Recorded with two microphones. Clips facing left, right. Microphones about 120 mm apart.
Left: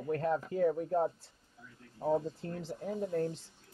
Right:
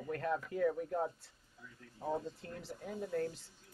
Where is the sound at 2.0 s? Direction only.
25° left (ahead or behind).